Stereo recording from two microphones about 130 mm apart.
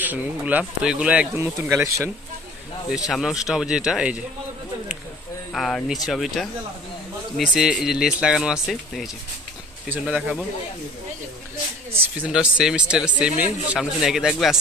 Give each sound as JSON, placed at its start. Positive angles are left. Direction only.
{"t": 0.0, "sound": "speech", "side_deg": -15}
{"t": 1.3, "sound": "speech", "side_deg": -20}
{"t": 3.1, "sound": "speech", "side_deg": -5}
{"t": 5.5, "sound": "speech", "side_deg": 5}
{"t": 11.9, "sound": "speech", "side_deg": -10}